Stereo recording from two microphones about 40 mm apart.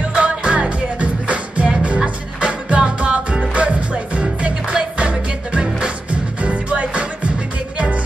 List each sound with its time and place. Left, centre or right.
0.1 s music: right